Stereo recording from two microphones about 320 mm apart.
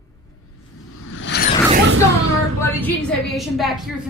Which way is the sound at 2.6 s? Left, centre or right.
Centre.